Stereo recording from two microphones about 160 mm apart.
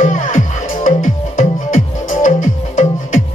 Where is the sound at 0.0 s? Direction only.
50° left (ahead or behind).